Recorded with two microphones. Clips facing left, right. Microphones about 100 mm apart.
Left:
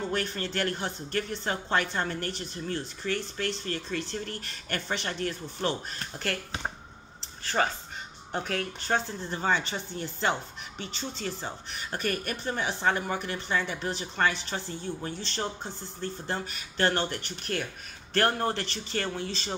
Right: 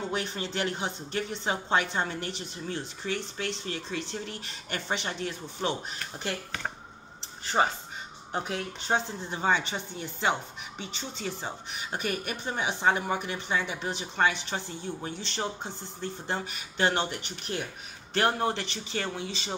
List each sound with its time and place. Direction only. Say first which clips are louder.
0.1 s speech: left 1 dB; 20° right (ahead or behind)
7.6 s speech: right 2 dB; 20° right (ahead or behind)